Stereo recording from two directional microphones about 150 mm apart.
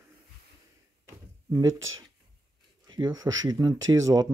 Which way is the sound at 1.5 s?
25° right (ahead or behind).